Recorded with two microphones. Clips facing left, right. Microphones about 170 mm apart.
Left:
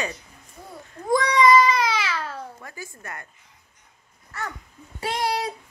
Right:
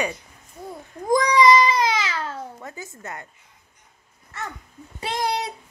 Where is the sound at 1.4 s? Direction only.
15° right (ahead or behind).